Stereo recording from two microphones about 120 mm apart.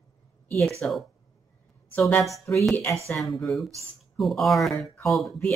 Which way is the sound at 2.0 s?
15° left (ahead or behind).